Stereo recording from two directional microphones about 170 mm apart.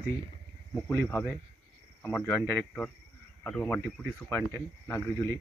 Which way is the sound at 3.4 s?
10° left (ahead or behind).